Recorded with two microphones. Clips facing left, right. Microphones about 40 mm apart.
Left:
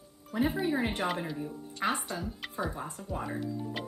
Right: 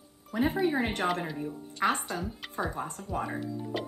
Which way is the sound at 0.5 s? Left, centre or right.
Centre.